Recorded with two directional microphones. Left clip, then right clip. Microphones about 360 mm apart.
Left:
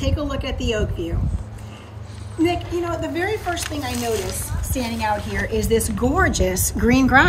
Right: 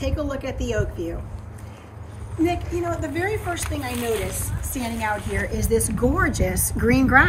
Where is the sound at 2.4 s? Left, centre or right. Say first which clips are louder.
Left 2 dB; centre.